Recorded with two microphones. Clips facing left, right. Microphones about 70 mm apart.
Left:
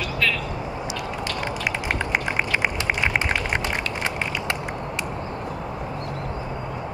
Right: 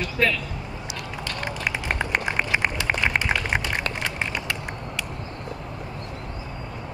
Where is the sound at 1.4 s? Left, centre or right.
Centre.